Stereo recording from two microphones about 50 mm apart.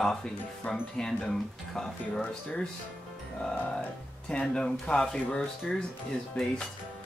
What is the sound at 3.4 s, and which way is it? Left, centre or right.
Speech, centre.